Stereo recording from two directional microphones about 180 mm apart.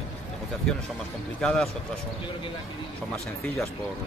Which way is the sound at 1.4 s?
5° left (ahead or behind).